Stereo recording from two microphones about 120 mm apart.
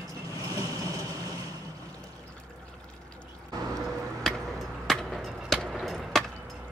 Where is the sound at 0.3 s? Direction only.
30° right (ahead or behind).